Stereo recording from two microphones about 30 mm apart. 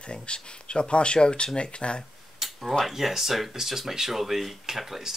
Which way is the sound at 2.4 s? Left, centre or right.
Centre.